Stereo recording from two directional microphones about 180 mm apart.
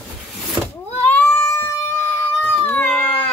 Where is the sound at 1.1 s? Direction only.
15° left (ahead or behind).